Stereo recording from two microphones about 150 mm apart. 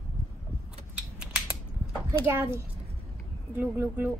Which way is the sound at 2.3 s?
15° right (ahead or behind).